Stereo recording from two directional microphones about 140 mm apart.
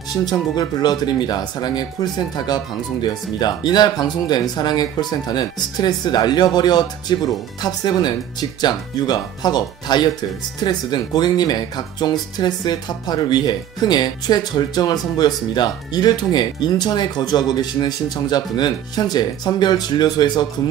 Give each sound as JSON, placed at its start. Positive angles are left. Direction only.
{"t": 0.2, "sound": "speech", "side_deg": 30}